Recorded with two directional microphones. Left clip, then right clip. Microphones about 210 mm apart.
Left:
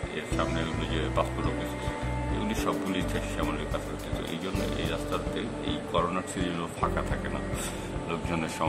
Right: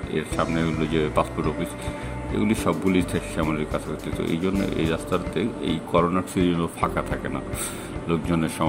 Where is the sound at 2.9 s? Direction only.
20° right (ahead or behind).